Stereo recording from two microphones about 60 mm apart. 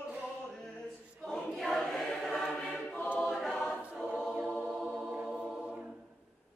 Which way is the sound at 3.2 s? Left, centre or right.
Centre.